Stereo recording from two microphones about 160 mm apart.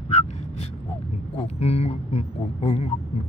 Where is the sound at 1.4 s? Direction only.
40° left (ahead or behind).